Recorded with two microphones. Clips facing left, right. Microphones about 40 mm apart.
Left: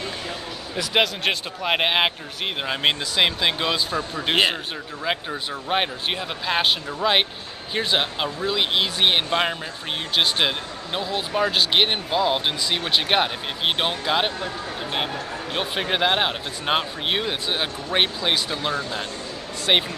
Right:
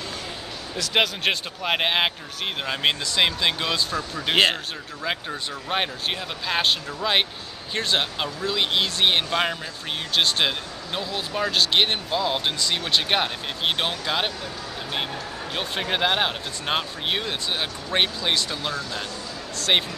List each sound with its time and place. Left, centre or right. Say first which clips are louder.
0.9 s a man's voice: left 1 dB; centre; by 4.4 s left
5.0 s a man's voice: left 2 dB; centre
15.5 s a man's voice: left 2 dB; centre
18.7 s speech: left 3 dB; left
19.7 s a man's voice: left 2 dB; centre